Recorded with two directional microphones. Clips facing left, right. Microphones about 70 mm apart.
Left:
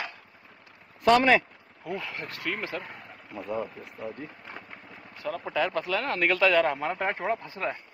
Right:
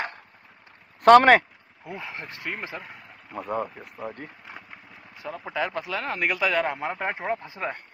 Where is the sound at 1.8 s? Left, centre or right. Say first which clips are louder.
Left 2 dB; right.